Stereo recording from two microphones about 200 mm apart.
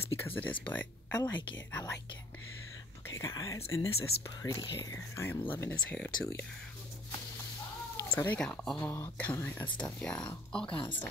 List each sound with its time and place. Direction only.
0.2 s speech: 10° left (ahead or behind)
3.1 s speech: 15° left (ahead or behind)
8.0 s speech: 10° left (ahead or behind)